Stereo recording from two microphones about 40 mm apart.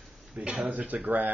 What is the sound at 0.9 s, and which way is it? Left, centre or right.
Speech, right.